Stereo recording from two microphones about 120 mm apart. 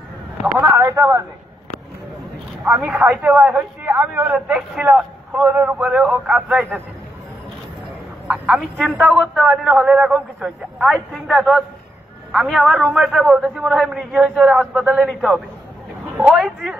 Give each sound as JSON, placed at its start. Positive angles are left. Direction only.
{"t": 0.7, "sound": "a sound", "side_deg": -20}
{"t": 2.6, "sound": "a man's voice", "side_deg": -5}
{"t": 3.0, "sound": "a man's voice", "side_deg": -15}
{"t": 8.3, "sound": "a man's voice", "side_deg": -5}